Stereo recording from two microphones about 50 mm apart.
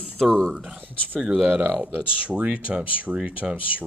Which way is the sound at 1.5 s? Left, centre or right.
Right.